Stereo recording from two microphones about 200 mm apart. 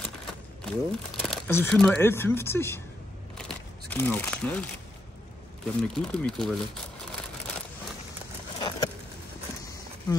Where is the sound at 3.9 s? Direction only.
10° left (ahead or behind).